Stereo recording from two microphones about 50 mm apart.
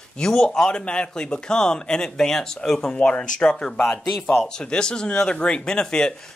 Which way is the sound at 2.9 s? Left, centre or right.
Left.